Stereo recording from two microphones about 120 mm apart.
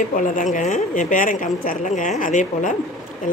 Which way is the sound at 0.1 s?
90° left.